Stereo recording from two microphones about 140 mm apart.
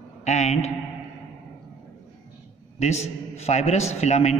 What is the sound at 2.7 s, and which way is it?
A man's voice, 55° left (ahead or behind).